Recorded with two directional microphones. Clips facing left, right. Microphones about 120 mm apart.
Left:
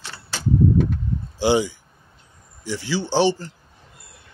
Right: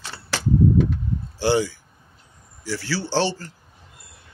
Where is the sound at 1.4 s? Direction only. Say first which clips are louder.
Left 2 dB; 15° left (ahead or behind).